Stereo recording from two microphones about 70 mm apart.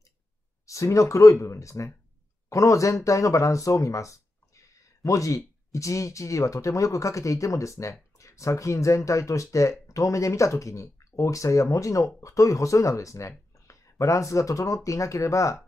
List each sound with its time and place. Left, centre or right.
0.7 s speech: left